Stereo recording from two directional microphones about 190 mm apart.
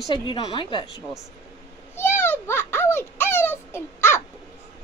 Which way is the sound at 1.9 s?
10° left (ahead or behind).